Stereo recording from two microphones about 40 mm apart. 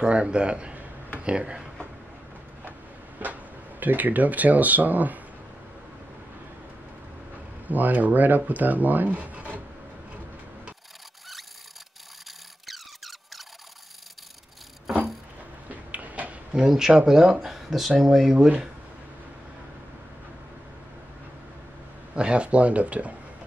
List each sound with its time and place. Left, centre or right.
0.0 s speech: right
3.2 s speech: right
7.6 s speech: right
12.6 s squeak: centre
15.7 s a sound: right
16.5 s speech: centre
22.1 s speech: right